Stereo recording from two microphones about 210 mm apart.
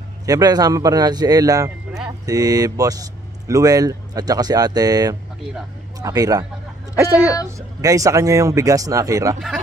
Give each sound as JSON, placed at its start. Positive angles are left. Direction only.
{"t": 0.3, "sound": "speech", "side_deg": -20}
{"t": 1.9, "sound": "vehicle", "side_deg": -5}
{"t": 2.2, "sound": "speech", "side_deg": -15}
{"t": 7.5, "sound": "speech", "side_deg": -15}